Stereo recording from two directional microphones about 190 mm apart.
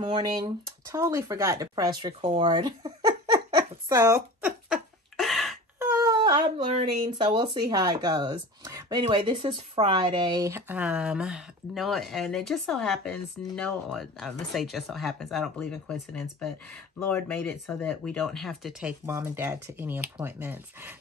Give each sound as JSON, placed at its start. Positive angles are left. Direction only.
{"t": 0.0, "sound": "a sound", "side_deg": -25}
{"t": 5.8, "sound": "wail", "side_deg": -15}
{"t": 6.7, "sound": "speech", "side_deg": -30}
{"t": 19.0, "sound": "speech", "side_deg": -15}